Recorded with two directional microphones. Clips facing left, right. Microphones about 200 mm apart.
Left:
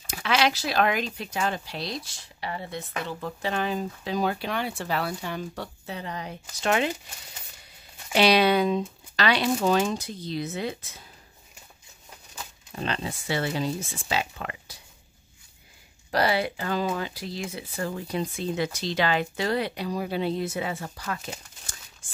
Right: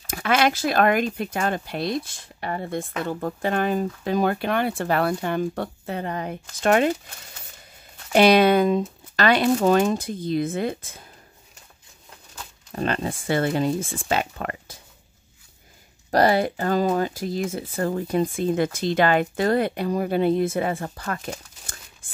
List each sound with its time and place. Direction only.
0.1 s speech: 50° right (ahead or behind)
8.1 s speech: 50° right (ahead or behind)
12.7 s speech: 50° right (ahead or behind)
16.1 s speech: 45° right (ahead or behind)